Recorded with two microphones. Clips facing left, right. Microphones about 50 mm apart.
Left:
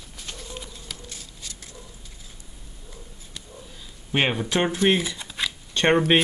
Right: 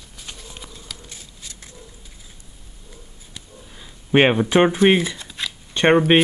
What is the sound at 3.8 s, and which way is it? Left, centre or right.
Speech, right.